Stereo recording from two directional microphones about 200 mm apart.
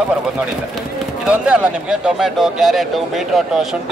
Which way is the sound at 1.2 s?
5° right (ahead or behind).